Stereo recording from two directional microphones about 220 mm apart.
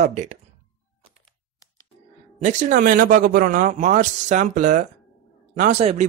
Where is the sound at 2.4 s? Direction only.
35° right (ahead or behind).